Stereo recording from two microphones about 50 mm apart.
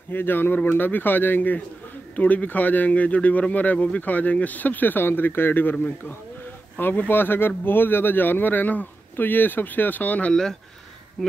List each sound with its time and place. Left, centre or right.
0.1 s speech: left
7.1 s speech: left
11.2 s speech: centre